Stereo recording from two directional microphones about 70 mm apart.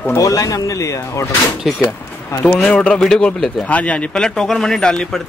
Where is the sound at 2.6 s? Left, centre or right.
Centre.